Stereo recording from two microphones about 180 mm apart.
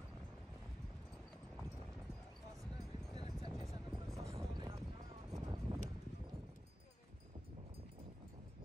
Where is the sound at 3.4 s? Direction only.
20° right (ahead or behind).